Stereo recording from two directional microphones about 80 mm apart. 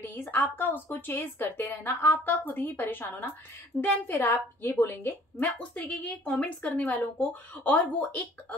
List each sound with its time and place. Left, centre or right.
0.1 s a woman's voice: left
5.6 s a woman's voice: centre